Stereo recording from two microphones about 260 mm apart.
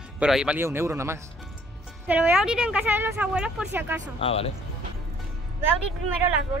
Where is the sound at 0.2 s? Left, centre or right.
Centre.